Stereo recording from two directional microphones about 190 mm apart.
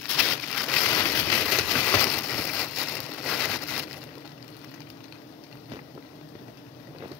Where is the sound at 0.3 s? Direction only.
5° left (ahead or behind).